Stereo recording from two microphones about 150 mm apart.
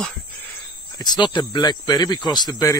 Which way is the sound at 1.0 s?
30° left (ahead or behind).